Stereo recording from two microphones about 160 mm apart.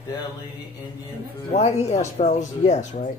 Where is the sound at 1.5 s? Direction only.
45° left (ahead or behind).